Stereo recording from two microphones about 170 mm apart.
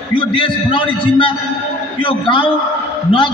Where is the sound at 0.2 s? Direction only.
30° left (ahead or behind).